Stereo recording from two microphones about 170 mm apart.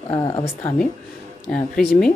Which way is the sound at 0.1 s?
30° left (ahead or behind).